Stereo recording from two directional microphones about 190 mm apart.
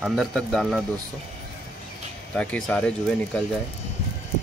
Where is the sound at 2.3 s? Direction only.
5° left (ahead or behind).